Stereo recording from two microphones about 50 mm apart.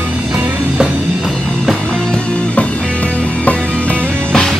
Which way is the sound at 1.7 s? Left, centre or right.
Centre.